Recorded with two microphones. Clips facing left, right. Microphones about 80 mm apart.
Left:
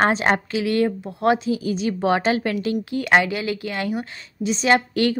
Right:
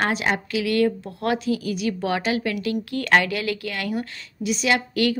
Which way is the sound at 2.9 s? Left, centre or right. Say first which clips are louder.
Left 1 dB; centre.